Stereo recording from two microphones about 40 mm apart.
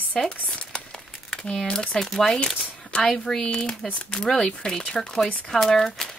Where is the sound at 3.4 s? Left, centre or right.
Left.